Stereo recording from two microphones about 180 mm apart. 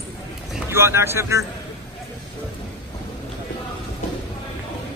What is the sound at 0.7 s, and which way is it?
Speech, 15° right (ahead or behind).